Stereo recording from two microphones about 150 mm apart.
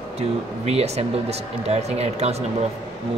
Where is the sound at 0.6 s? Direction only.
45° right (ahead or behind).